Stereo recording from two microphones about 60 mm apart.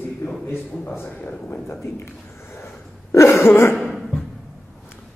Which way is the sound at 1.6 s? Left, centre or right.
Left.